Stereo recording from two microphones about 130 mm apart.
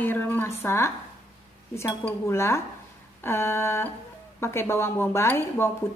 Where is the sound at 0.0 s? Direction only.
15° left (ahead or behind).